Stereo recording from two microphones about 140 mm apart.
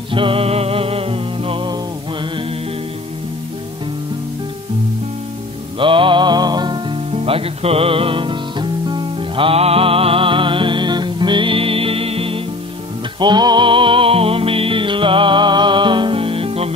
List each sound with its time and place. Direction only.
0.1 s music: 40° right (ahead or behind)
5.8 s music: 35° right (ahead or behind)
13.2 s music: 30° right (ahead or behind)